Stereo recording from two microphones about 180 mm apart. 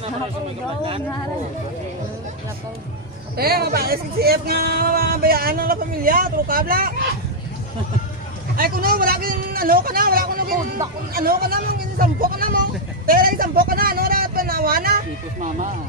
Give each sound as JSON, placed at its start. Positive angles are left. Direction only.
{"t": 3.3, "sound": "speech", "side_deg": -60}
{"t": 8.5, "sound": "a man's voice", "side_deg": -55}
{"t": 13.0, "sound": "vehicle", "side_deg": -55}